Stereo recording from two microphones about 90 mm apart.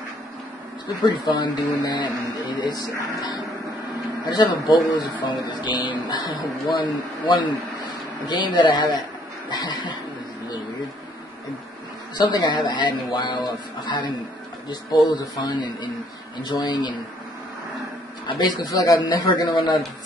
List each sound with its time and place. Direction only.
1.0 s speech: 55° left (ahead or behind)
9.5 s a sound: 55° left (ahead or behind)
12.2 s speech: 55° left (ahead or behind)
18.2 s speech: 50° left (ahead or behind)
18.9 s speech: 55° left (ahead or behind)